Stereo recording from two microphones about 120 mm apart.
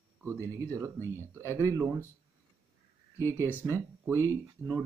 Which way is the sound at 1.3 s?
25° right (ahead or behind).